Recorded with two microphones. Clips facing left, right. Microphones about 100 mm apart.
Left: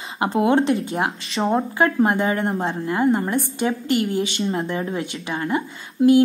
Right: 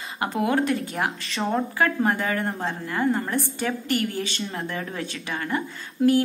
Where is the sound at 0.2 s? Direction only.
25° left (ahead or behind).